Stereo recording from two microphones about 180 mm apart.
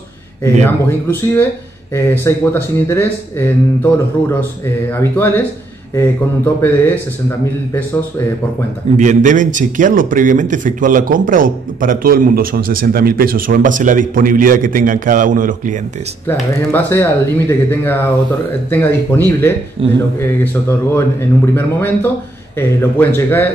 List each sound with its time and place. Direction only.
0.4 s speech: 15° left (ahead or behind)
8.9 s a man's voice: 40° right (ahead or behind)
16.3 s speech: 10° left (ahead or behind)
19.8 s speech: 30° right (ahead or behind)
20.2 s speech: 15° left (ahead or behind)